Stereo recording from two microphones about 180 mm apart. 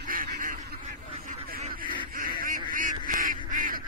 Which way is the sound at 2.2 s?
50° right (ahead or behind).